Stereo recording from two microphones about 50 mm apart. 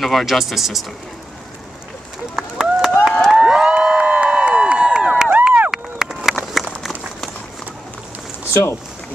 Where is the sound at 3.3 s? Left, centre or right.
Centre.